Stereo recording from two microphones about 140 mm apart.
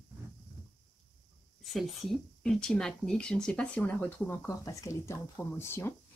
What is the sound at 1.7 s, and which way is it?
A woman's voice, centre (ahead or behind).